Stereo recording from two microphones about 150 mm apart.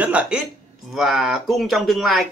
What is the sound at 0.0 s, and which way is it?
Speech, 10° right (ahead or behind).